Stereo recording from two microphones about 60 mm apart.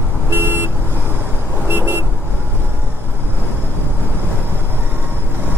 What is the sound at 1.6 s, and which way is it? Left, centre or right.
Vehicle, right.